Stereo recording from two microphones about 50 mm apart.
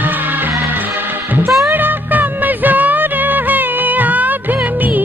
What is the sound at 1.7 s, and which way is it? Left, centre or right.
Music, right.